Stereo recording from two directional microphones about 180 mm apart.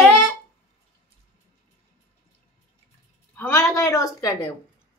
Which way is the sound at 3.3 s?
15° left (ahead or behind).